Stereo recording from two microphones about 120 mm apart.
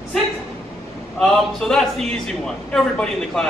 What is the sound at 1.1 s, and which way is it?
A man's voice, 5° left (ahead or behind).